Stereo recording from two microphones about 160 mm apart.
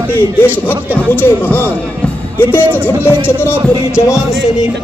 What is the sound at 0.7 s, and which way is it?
Speech, 15° left (ahead or behind).